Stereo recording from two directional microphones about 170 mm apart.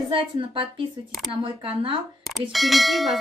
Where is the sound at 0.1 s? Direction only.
30° right (ahead or behind).